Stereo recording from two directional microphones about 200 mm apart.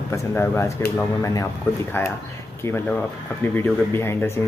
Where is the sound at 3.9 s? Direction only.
10° left (ahead or behind).